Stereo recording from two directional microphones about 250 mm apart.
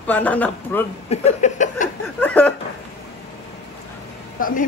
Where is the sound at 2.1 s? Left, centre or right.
Centre.